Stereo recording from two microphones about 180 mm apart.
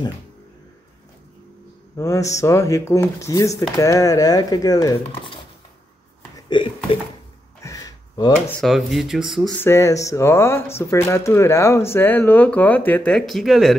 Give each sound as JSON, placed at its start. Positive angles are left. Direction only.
{"t": 2.0, "sound": "speech", "side_deg": 15}
{"t": 6.3, "sound": "speech", "side_deg": 25}
{"t": 7.6, "sound": "a sound", "side_deg": 20}
{"t": 8.5, "sound": "speech", "side_deg": 0}
{"t": 9.6, "sound": "speech", "side_deg": 15}